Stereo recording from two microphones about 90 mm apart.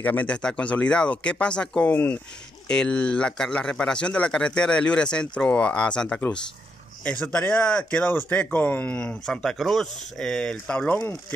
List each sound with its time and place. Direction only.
0.0 s speech: 15° left (ahead or behind)